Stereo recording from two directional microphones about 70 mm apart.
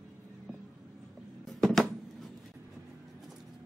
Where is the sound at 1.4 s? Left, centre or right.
Centre.